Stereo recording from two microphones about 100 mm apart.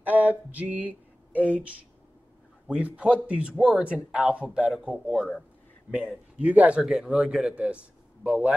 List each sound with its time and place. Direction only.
0.0 s a sound: 15° right (ahead or behind)
2.7 s speech: 10° right (ahead or behind)
5.1 s a man's voice: centre (ahead or behind)
6.3 s speech: 15° right (ahead or behind)
6.8 s a man's voice: 5° right (ahead or behind)
7.5 s a man's voice: 15° right (ahead or behind)